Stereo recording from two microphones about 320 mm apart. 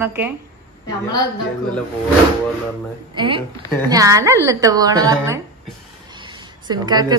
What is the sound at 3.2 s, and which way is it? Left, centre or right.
A woman's voice, centre.